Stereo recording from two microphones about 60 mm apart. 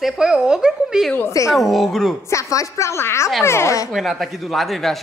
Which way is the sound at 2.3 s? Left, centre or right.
Left.